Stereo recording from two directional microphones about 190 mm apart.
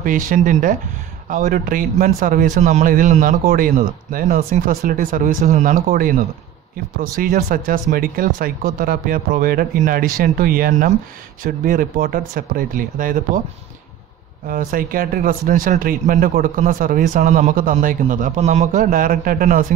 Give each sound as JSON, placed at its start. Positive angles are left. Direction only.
{"t": 0.0, "sound": "a man's voice", "side_deg": -45}
{"t": 14.5, "sound": "a man's voice", "side_deg": -50}